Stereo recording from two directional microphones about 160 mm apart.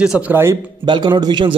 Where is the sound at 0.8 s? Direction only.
25° right (ahead or behind).